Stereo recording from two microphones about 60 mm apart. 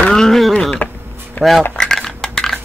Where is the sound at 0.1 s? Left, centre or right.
Centre.